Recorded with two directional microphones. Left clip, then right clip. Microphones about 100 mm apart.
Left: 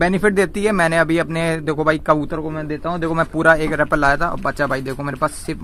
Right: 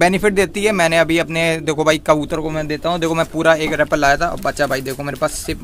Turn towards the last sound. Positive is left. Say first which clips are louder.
# right 1 dB
turn(degrees=-15)  # may be behind; listen again after turning